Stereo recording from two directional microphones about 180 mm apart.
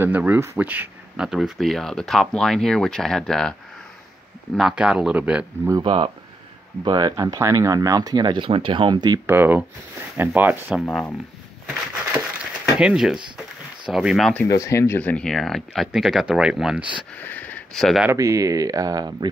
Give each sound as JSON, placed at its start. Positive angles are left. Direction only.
{"t": 0.0, "sound": "speech", "side_deg": -10}
{"t": 4.6, "sound": "speech", "side_deg": -5}
{"t": 5.7, "sound": "speech", "side_deg": -20}
{"t": 10.9, "sound": "speech", "side_deg": 5}
{"t": 12.7, "sound": "speech", "side_deg": -5}
{"t": 14.5, "sound": "speech", "side_deg": 15}
{"t": 17.2, "sound": "speech", "side_deg": 10}
{"t": 18.1, "sound": "speech", "side_deg": -20}